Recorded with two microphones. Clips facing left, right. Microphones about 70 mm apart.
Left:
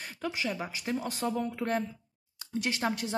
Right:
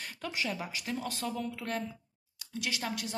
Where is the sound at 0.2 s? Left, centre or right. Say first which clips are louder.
Left 3 dB; centre.